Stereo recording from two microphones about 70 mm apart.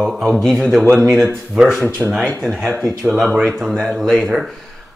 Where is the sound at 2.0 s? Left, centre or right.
Centre.